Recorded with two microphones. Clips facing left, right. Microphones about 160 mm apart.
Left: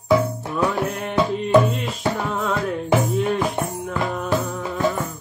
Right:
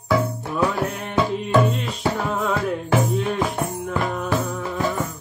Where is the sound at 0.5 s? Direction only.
Centre (ahead or behind).